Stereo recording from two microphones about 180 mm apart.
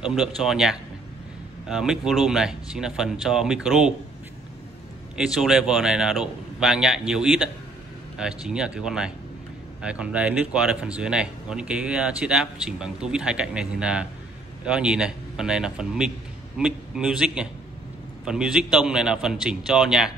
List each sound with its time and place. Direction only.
0.1 s speech: centre (ahead or behind)
5.1 s speech: centre (ahead or behind)